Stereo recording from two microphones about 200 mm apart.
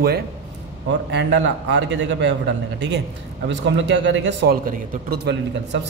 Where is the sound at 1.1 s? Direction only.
60° right (ahead or behind).